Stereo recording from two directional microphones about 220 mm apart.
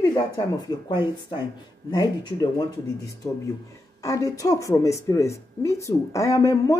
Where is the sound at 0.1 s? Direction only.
20° left (ahead or behind).